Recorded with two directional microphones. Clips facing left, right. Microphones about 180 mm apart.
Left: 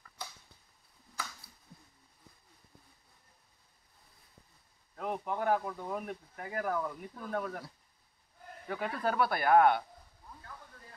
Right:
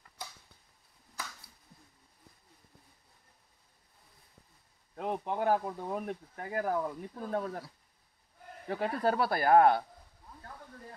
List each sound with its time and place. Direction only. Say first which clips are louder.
4.9 s speech: right 2 dB; 30° right (ahead or behind)
8.6 s speech: right 4 dB; 35° right (ahead or behind)